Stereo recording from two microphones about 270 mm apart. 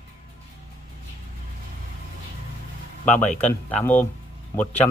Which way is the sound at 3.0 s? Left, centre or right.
Centre.